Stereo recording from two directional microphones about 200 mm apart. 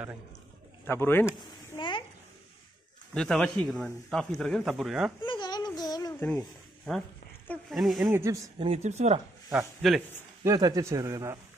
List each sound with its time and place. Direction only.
0.8 s a man's voice: 10° left (ahead or behind)
1.8 s a sound: 25° left (ahead or behind)
3.2 s speech: 5° left (ahead or behind)
5.2 s babbling: 20° left (ahead or behind)
7.7 s speech: centre (ahead or behind)
8.1 s a man's voice: 15° right (ahead or behind)
8.5 s speech: 30° right (ahead or behind)
9.5 s speech: 5° right (ahead or behind)
10.4 s a man's voice: 15° right (ahead or behind)